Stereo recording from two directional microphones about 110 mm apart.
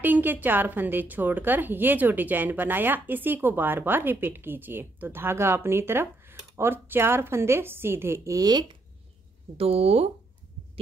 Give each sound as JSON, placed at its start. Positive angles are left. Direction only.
{"t": 0.0, "sound": "a woman's voice", "side_deg": -15}
{"t": 9.6, "sound": "speech", "side_deg": -65}